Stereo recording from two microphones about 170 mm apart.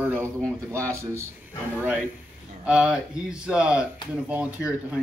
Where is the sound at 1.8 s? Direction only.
10° right (ahead or behind).